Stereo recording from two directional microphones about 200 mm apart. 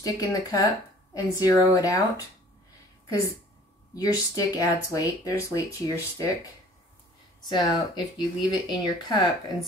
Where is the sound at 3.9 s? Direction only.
15° left (ahead or behind).